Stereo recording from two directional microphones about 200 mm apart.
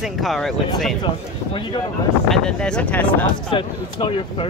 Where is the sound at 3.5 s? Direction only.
25° left (ahead or behind).